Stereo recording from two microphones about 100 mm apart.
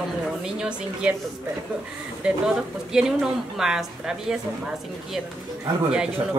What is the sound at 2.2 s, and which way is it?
A woman's voice, 5° right (ahead or behind).